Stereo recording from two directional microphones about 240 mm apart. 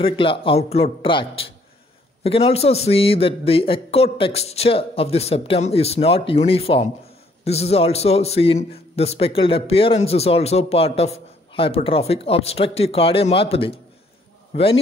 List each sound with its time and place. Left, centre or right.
0.0 s a man's voice: left